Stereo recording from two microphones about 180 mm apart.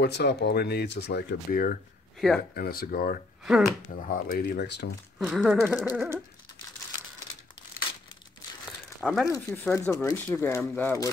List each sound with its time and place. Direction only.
0.0 s speech: 65° left (ahead or behind)
2.1 s speech: centre (ahead or behind)
2.5 s speech: 55° left (ahead or behind)
3.4 s speech: 5° right (ahead or behind)
4.1 s speech: 55° left (ahead or behind); by 4.9 s 70° left (ahead or behind)
5.2 s speech: centre (ahead or behind)
8.6 s crumpling: centre (ahead or behind)
9.3 s speech: 15° left (ahead or behind)